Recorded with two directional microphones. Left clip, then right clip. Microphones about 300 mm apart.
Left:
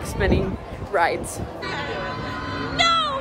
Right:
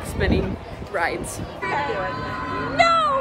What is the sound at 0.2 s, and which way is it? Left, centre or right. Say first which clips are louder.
Speech: left 1 dB; centre.